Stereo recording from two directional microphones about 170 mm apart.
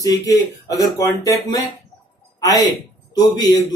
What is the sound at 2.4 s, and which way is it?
A man's voice, 20° left (ahead or behind).